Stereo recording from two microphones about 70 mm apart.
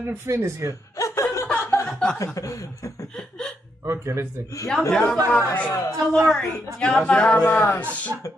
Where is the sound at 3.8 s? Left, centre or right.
Right.